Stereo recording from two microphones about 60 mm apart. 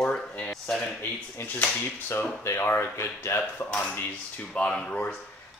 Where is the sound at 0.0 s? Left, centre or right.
Centre.